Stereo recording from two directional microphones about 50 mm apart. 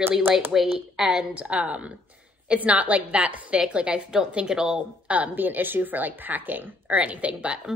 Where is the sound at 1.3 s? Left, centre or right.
Right.